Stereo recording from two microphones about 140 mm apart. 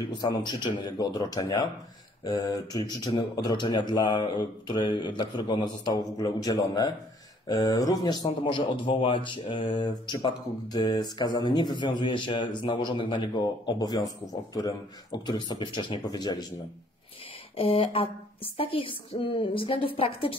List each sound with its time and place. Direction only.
0.2 s speech: 30° left (ahead or behind)
17.6 s speech: 40° left (ahead or behind)